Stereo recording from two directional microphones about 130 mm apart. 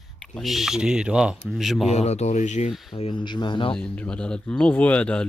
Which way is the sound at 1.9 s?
55° left (ahead or behind).